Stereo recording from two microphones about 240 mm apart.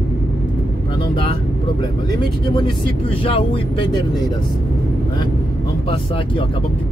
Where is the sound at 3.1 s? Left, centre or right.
Left.